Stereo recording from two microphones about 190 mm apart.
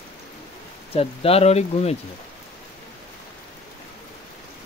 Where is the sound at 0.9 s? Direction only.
30° left (ahead or behind).